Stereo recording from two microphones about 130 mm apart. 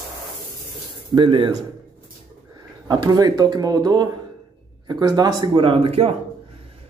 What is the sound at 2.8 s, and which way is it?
Speech, 30° right (ahead or behind).